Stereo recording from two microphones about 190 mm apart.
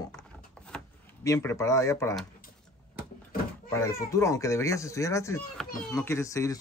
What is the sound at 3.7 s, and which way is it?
Speech, 15° left (ahead or behind).